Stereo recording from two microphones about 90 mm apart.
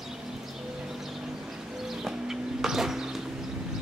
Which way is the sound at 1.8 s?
5° right (ahead or behind).